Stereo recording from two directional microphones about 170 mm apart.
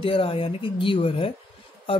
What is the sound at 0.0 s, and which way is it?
Speech, 30° left (ahead or behind).